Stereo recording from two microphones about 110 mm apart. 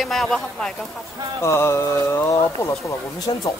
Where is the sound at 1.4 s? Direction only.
25° left (ahead or behind).